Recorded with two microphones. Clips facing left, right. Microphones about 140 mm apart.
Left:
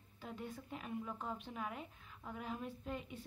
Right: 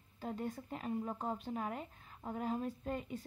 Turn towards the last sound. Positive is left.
turn(degrees=-45)  # may be behind; listen again after turning